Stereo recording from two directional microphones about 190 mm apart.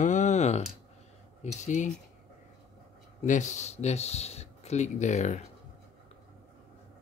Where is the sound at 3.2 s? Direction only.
40° left (ahead or behind).